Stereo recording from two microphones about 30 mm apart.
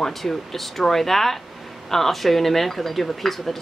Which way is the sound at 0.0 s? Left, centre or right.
Centre.